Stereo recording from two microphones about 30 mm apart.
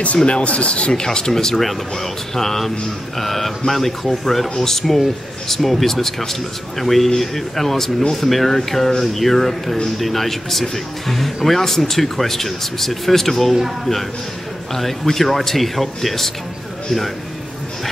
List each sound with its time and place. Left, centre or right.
0.3 s speech: left
1.0 s speech: centre
1.6 s speech: centre
14.7 s speech: centre